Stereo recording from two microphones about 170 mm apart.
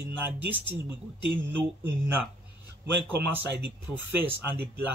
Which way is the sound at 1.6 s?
10° right (ahead or behind).